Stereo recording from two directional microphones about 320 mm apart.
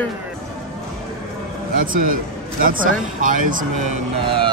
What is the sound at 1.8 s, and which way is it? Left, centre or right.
Speech, right.